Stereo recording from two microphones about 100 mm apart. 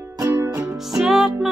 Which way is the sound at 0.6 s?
5° right (ahead or behind).